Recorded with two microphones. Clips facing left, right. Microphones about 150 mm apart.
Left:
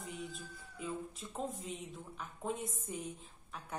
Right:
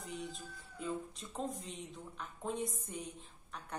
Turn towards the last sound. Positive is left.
turn(degrees=5)  # may be behind; listen again after turning